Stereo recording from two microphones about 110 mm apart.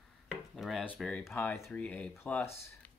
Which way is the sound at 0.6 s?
Centre (ahead or behind).